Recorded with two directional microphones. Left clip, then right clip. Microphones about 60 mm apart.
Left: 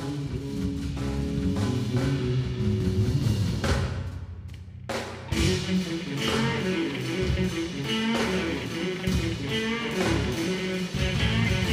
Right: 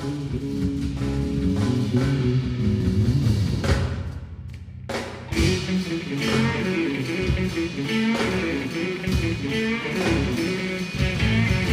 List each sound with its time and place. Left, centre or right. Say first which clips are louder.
4.9 s music: right 3 dB; right